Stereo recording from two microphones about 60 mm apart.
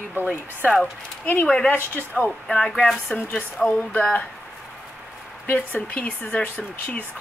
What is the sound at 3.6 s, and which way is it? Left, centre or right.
Speech, left.